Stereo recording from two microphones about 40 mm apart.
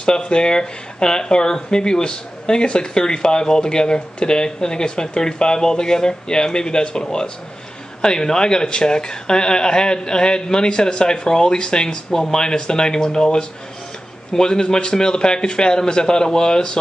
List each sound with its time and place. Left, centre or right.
0.2 s speech: left